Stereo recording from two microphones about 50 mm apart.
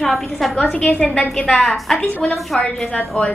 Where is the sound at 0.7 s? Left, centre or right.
Left.